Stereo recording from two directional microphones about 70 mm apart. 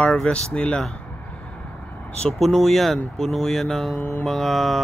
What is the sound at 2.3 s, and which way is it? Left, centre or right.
Speech, centre.